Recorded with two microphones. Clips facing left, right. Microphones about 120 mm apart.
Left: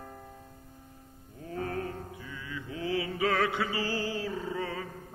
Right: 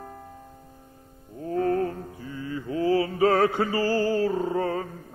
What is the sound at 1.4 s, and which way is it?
Mantra, 35° right (ahead or behind).